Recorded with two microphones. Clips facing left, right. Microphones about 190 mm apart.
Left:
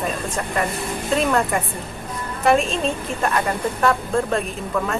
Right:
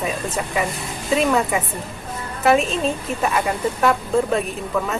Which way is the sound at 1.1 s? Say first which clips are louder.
Right 2 dB; 5° right (ahead or behind).